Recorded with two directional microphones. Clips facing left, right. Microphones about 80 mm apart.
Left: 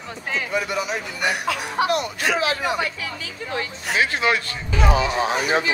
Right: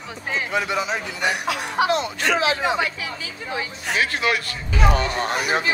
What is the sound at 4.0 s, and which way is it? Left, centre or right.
Speech, left.